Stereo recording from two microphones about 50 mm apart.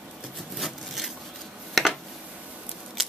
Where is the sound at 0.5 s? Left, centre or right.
Centre.